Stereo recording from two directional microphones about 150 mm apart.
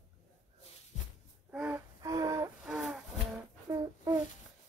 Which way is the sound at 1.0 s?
55° left (ahead or behind).